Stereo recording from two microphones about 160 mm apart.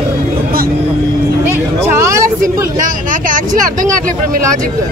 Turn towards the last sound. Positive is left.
turn(degrees=-55)  # may be behind; listen again after turning